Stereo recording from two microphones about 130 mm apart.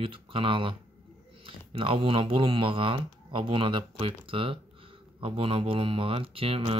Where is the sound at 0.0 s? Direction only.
45° right (ahead or behind).